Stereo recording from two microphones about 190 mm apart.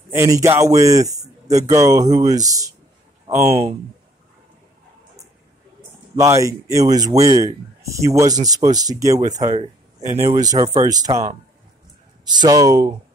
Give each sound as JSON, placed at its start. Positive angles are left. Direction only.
{"t": 0.1, "sound": "speech", "side_deg": -15}
{"t": 6.1, "sound": "speech", "side_deg": -15}
{"t": 12.3, "sound": "speech", "side_deg": -20}